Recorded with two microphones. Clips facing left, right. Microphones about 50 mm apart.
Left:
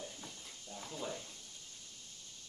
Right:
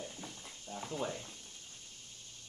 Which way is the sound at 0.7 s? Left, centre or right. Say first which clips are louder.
Right 5 dB; right.